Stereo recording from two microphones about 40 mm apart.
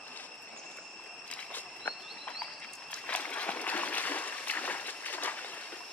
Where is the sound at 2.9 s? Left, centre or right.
Left.